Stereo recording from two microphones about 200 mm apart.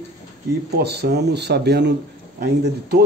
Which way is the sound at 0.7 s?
55° right (ahead or behind).